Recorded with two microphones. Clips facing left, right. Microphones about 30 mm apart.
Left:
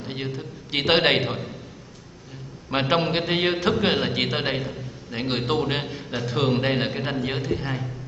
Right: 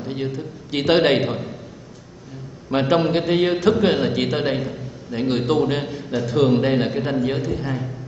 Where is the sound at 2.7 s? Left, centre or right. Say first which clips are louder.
Right 4 dB; centre.